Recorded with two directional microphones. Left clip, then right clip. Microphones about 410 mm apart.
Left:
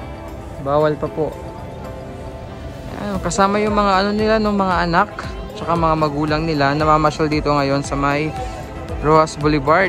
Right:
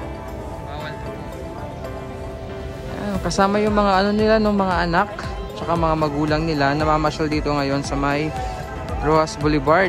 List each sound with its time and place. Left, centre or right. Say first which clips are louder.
3.0 s a man's voice: left 2 dB; centre